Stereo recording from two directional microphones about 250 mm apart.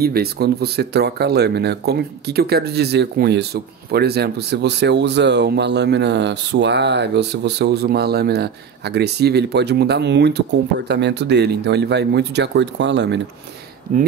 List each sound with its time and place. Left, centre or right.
0.0 s speech: right
13.9 s speech: right